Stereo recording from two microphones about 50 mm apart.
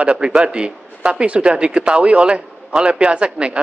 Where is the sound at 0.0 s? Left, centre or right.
Right.